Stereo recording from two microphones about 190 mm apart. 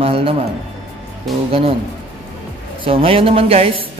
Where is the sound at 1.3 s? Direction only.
Centre (ahead or behind).